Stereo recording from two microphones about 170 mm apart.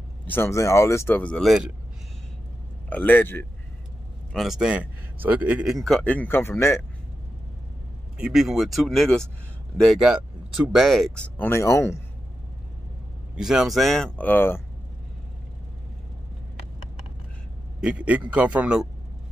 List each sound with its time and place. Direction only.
0.3 s speech: 15° left (ahead or behind); by 1.7 s centre (ahead or behind)
2.9 s speech: 10° left (ahead or behind)
4.3 s speech: centre (ahead or behind)
8.2 s speech: 5° right (ahead or behind)
11.3 s speech: 15° left (ahead or behind)
13.4 s speech: centre (ahead or behind)
17.7 s speech: 5° right (ahead or behind)